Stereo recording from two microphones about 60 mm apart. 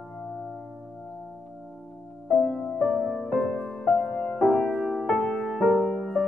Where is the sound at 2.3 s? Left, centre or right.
Centre.